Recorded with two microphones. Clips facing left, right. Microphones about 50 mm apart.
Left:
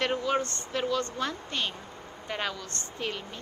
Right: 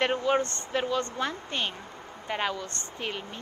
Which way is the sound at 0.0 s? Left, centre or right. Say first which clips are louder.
Right 2 dB; right.